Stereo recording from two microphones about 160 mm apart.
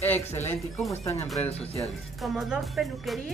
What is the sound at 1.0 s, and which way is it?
Speech, 15° left (ahead or behind).